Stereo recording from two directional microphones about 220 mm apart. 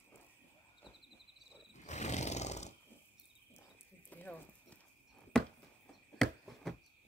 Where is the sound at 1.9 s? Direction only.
30° left (ahead or behind).